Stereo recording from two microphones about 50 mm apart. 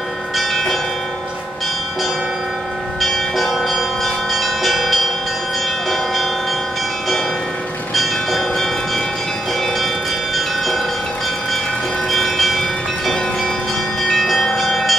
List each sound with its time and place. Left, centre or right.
3.0 s church bell: centre
7.9 s church bell: centre
12.1 s church bell: centre
14.0 s bell: centre